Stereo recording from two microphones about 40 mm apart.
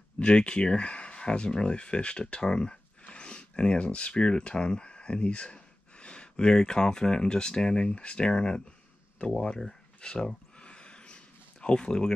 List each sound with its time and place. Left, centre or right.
0.2 s speech: left
10.0 s a sound: left
11.6 s speech: left